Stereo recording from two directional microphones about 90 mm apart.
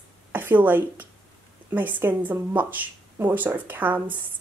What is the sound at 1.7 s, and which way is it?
Speech, 20° right (ahead or behind).